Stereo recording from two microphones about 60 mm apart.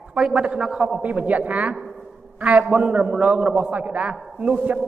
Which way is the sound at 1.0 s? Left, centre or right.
Right.